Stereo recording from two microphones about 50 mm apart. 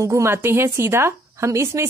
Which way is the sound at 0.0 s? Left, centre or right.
Right.